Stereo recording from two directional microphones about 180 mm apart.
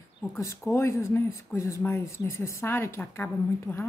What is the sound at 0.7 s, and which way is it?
Speech, 15° left (ahead or behind).